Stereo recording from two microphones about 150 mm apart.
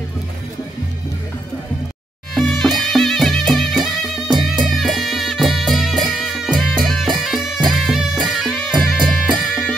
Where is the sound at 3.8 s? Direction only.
30° right (ahead or behind).